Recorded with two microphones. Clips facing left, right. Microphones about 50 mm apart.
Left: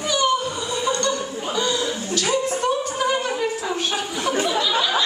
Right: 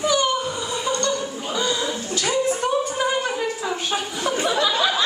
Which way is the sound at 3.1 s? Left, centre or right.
Centre.